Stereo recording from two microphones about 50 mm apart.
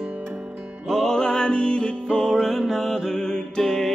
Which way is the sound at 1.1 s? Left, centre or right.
Centre.